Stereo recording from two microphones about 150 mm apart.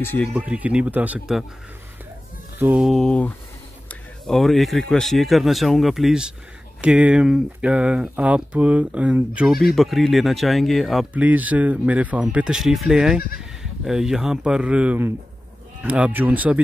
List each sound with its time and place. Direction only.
0.4 s speech: 10° right (ahead or behind)
2.6 s speech: 10° right (ahead or behind)
2.9 s speech: 5° left (ahead or behind)
11.2 s speech: 10° right (ahead or behind)